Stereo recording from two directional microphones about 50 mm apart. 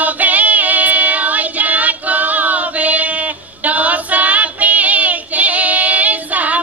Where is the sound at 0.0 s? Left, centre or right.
Right.